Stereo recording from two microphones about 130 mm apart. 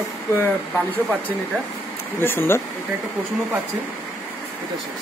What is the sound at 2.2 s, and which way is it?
Speech, 15° left (ahead or behind).